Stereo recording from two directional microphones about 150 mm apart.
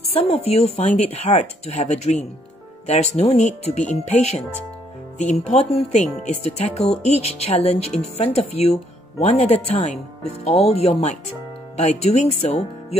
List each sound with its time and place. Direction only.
0.1 s speech: 40° left (ahead or behind)